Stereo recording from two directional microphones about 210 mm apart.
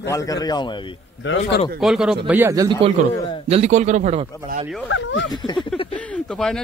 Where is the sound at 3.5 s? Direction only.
35° right (ahead or behind).